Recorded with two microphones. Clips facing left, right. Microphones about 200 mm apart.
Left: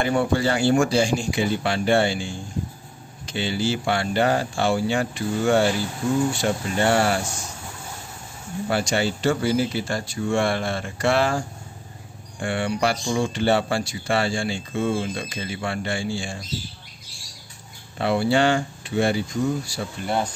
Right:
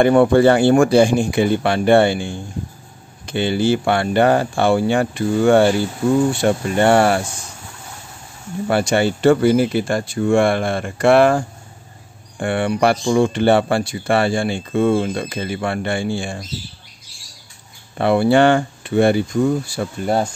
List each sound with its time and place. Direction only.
0.0 s speech: 55° right (ahead or behind)
8.6 s speech: 55° right (ahead or behind)
17.9 s speech: 55° right (ahead or behind)